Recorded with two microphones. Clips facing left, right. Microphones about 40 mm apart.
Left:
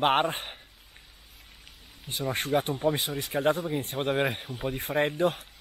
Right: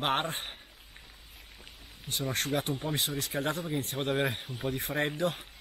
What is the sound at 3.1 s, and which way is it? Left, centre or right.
Speech, centre.